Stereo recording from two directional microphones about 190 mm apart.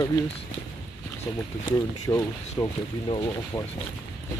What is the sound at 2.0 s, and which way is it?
Speech, 20° left (ahead or behind).